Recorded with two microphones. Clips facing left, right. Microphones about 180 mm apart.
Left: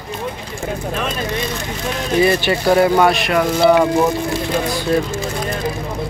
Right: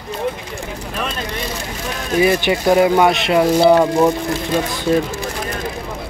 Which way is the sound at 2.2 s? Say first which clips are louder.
Right 1 dB; 15° right (ahead or behind).